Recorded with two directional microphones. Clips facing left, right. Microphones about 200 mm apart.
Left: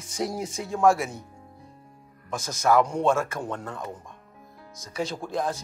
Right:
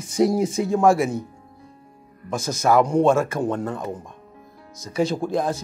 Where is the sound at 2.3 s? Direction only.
5° right (ahead or behind).